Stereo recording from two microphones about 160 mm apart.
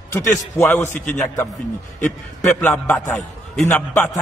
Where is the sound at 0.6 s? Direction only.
10° left (ahead or behind).